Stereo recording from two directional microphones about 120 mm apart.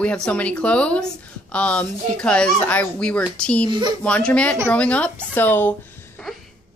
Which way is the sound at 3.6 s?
40° right (ahead or behind).